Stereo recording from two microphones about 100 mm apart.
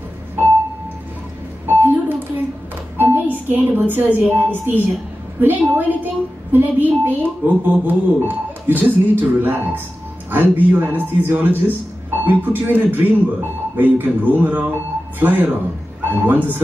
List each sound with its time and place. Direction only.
1.7 s a sound: 20° right (ahead or behind)
3.0 s music: 20° right (ahead or behind)
3.5 s speech: 20° right (ahead or behind)